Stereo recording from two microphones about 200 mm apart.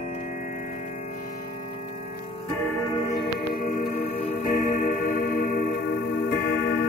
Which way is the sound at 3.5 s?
50° left (ahead or behind).